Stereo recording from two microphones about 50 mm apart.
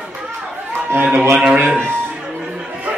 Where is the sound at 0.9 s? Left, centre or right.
Right.